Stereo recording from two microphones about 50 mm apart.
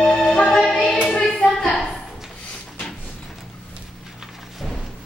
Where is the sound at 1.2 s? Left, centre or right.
Centre.